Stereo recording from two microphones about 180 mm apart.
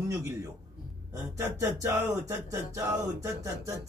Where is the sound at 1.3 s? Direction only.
15° right (ahead or behind).